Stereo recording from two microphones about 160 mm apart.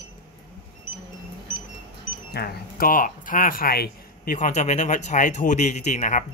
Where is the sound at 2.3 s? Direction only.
80° left.